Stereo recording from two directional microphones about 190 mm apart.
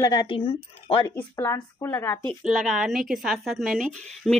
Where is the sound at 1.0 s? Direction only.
15° left (ahead or behind).